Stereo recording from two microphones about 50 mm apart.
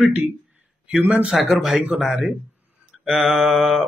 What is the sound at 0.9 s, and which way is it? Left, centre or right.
Speech, right.